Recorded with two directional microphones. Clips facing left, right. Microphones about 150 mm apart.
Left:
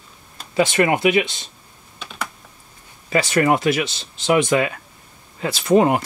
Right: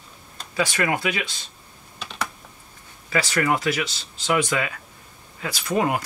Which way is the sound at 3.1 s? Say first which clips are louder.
Left 5 dB; 25° left (ahead or behind).